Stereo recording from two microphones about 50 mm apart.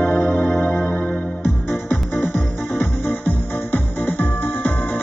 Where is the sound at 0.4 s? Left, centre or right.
Left.